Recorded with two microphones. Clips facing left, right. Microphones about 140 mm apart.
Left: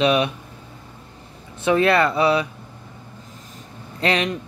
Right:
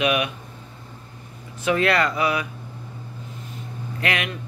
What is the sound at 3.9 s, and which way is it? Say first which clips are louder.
Speech: left 5 dB; 30° left (ahead or behind).